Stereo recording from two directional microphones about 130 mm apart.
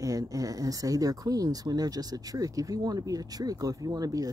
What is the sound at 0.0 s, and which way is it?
Speech, 25° right (ahead or behind).